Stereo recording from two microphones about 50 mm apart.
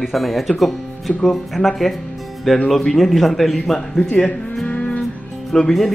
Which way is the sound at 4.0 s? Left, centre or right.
Left.